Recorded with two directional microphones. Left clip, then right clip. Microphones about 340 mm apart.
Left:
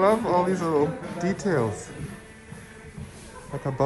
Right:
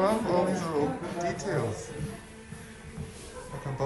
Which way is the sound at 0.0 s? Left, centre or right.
Centre.